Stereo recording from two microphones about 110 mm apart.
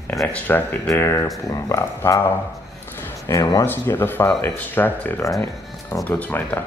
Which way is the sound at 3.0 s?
30° left (ahead or behind).